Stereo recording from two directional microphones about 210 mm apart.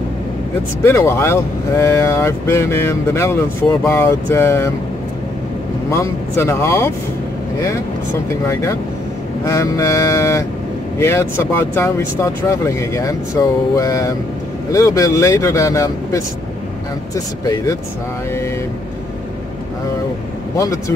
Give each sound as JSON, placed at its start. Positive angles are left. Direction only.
{"t": 0.8, "sound": "speech", "side_deg": 10}
{"t": 5.9, "sound": "speech", "side_deg": 15}
{"t": 8.5, "sound": "speech", "side_deg": 15}
{"t": 20.5, "sound": "speech", "side_deg": 15}